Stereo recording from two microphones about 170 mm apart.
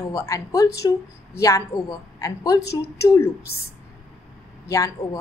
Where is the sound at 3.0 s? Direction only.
15° left (ahead or behind).